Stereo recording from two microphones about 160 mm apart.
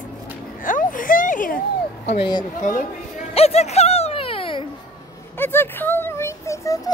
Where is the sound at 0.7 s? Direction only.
55° left (ahead or behind).